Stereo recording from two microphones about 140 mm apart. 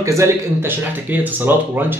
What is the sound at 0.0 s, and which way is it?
Speech, 20° right (ahead or behind).